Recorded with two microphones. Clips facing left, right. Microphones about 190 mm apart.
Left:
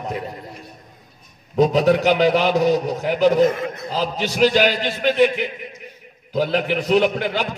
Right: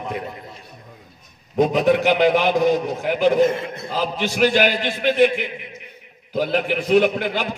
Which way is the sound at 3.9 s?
45° left (ahead or behind).